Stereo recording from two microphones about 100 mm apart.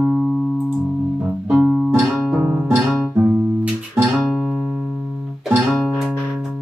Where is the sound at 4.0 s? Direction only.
5° right (ahead or behind).